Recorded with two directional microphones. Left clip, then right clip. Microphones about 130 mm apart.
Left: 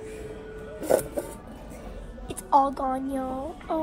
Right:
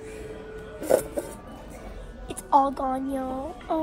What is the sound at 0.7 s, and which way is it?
Music, 5° right (ahead or behind).